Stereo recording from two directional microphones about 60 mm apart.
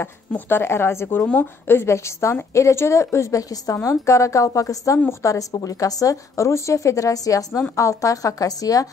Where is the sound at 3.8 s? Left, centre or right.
Left.